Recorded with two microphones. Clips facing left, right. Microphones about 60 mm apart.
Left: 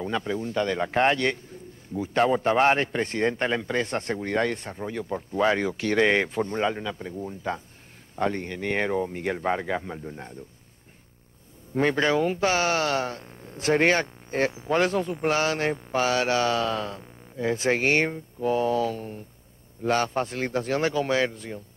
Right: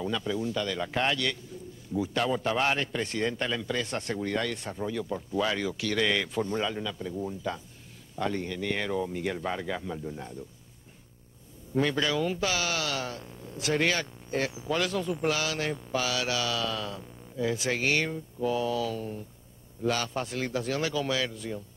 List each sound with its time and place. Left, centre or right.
0.0 s speech: left
11.7 s speech: left